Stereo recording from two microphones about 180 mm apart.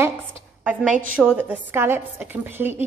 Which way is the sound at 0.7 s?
5° right (ahead or behind).